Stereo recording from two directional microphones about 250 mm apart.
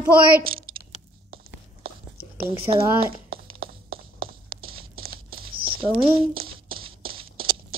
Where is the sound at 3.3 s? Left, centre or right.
Right.